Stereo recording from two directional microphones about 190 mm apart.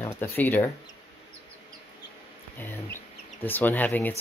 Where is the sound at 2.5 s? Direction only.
10° left (ahead or behind).